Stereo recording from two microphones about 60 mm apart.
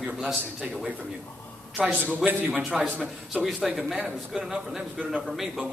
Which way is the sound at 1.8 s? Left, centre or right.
Right.